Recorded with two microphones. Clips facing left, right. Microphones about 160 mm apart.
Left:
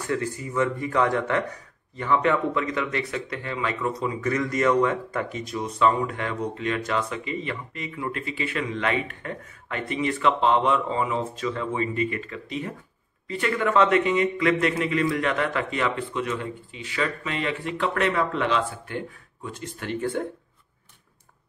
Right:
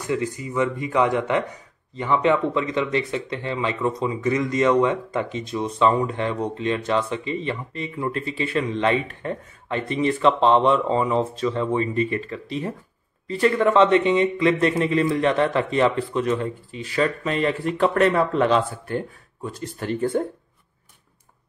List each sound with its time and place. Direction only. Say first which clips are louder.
0.0 s speech: right 2 dB; 15° right (ahead or behind); by 20.2 s 40° right (ahead or behind)